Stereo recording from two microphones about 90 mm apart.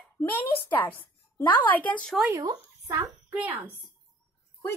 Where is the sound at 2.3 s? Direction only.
40° right (ahead or behind).